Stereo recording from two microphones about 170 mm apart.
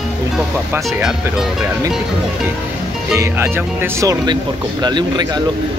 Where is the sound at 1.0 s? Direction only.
5° right (ahead or behind).